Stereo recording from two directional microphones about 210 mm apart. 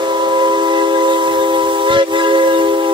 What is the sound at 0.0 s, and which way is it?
Steam whistle, 20° right (ahead or behind).